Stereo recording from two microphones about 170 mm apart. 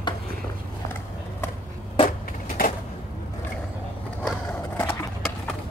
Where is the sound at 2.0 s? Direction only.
55° left (ahead or behind).